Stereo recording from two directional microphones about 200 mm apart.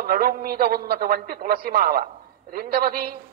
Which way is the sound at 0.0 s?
45° right (ahead or behind).